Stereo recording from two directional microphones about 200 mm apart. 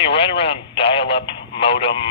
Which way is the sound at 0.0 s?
25° left (ahead or behind).